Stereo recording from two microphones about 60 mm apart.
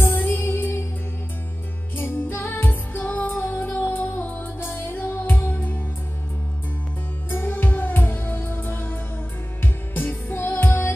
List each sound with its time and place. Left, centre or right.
0.0 s music: left
2.0 s music: left
5.5 s music: left
7.2 s music: left